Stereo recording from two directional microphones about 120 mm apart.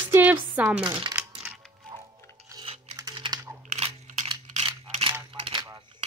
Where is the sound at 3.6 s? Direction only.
70° right (ahead or behind).